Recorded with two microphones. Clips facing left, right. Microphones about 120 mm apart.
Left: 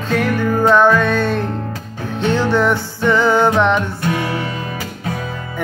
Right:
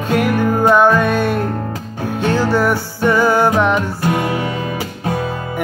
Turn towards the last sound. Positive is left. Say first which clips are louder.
# right 2 dB
turn(degrees=-40)  # may be behind; listen again after turning